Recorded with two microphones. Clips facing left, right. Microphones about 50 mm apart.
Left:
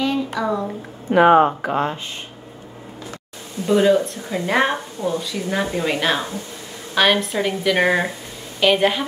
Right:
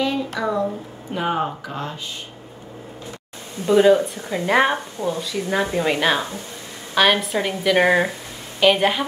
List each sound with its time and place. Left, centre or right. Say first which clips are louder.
0.0 s a sound: left 1 dB; centre
1.1 s speech: left 10 dB; left
1.6 s speech: left 8 dB; left
3.6 s speech: right 1 dB; centre